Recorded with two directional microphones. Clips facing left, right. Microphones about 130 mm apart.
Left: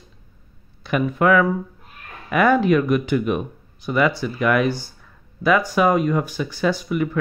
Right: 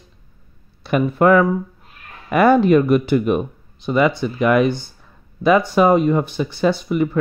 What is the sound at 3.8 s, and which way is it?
Speech, 25° right (ahead or behind).